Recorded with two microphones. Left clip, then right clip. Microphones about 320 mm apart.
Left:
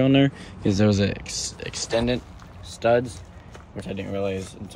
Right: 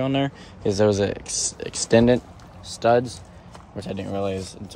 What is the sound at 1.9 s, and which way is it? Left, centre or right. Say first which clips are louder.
Speech: right 7 dB; right.